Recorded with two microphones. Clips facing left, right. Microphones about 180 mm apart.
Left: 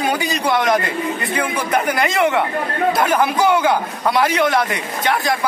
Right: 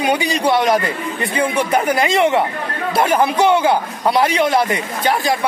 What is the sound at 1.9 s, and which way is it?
A man's voice, 25° right (ahead or behind).